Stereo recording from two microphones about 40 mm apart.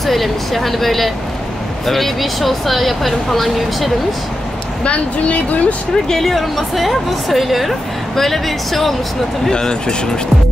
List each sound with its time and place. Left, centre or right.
0.0 s speech: centre
4.8 s speech: left
6.0 s speech: centre
9.5 s speech: centre